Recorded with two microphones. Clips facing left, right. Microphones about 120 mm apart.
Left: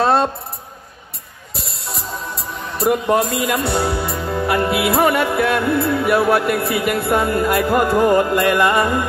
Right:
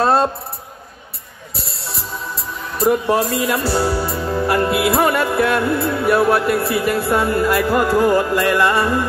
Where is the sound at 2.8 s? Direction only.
35° right (ahead or behind).